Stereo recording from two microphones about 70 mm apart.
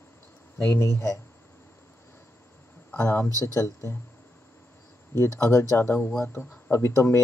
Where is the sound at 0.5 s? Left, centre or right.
Left.